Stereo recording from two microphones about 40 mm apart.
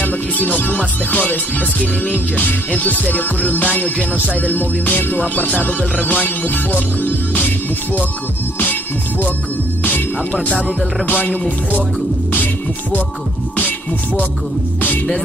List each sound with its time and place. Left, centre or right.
0.0 s music: left
13.6 s music: left